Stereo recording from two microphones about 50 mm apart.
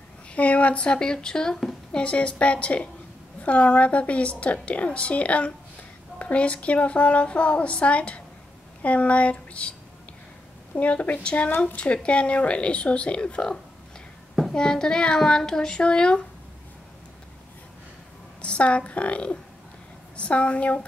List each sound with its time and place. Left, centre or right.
0.3 s a woman's voice: left
10.8 s a woman's voice: left
14.5 s a child's voice: centre
18.4 s a woman's voice: left